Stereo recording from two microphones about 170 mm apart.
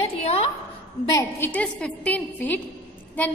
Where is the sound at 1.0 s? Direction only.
20° left (ahead or behind).